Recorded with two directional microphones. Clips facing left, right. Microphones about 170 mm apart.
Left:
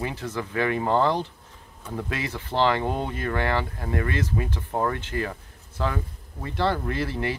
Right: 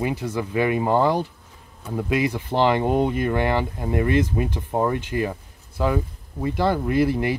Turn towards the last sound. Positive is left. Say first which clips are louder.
# right 7 dB
turn(degrees=-15)  # may be behind; listen again after turning